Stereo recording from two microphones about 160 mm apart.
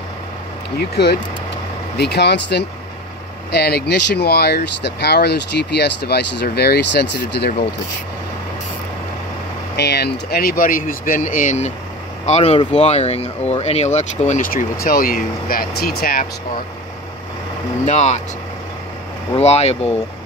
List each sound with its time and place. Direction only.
0.7 s speech: 90° left
9.8 s speech: 90° left; by 16.3 s 70° left (ahead or behind)
17.8 s speech: 45° left (ahead or behind)
19.3 s speech: 40° left (ahead or behind)